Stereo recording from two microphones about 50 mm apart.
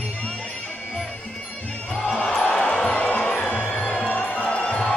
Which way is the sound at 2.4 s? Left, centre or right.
Left.